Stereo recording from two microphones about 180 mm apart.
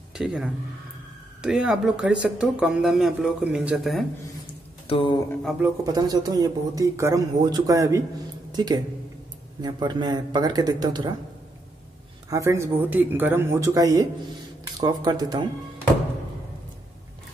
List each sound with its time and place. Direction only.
0.1 s speech: 5° right (ahead or behind)
4.8 s a sound: 30° left (ahead or behind)
5.9 s speech: 20° right (ahead or behind)
12.3 s speech: 15° right (ahead or behind)